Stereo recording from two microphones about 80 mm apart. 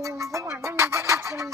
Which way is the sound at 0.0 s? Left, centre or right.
Right.